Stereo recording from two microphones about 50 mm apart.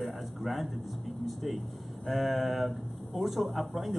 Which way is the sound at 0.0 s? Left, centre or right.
Centre.